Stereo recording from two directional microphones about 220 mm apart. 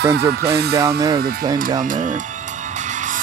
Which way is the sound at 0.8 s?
15° right (ahead or behind).